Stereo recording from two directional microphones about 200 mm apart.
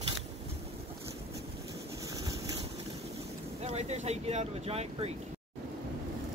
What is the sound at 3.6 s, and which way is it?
Speech, 30° right (ahead or behind).